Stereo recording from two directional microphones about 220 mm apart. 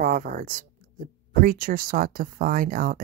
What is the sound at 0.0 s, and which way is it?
Speech, 40° right (ahead or behind).